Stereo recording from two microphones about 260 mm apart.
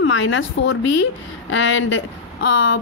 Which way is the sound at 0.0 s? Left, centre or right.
Left.